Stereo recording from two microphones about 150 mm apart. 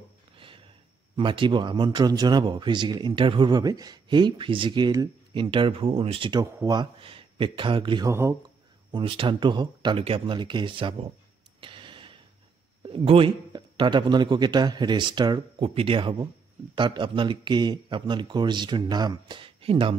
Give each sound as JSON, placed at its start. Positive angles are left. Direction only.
{"t": 0.4, "sound": "a sound", "side_deg": -35}
{"t": 1.1, "sound": "speech", "side_deg": -35}
{"t": 8.1, "sound": "speech", "side_deg": -20}
{"t": 8.9, "sound": "speech", "side_deg": -35}
{"t": 11.6, "sound": "a sound", "side_deg": -35}
{"t": 12.8, "sound": "speech", "side_deg": -40}